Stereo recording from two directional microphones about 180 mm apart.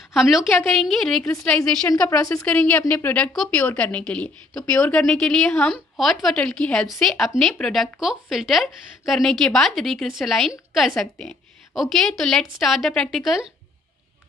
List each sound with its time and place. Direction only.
0.1 s a woman's voice: centre (ahead or behind)
0.5 s speech: 15° left (ahead or behind)
0.7 s a woman's voice: centre (ahead or behind)
1.2 s a woman's voice: 15° left (ahead or behind)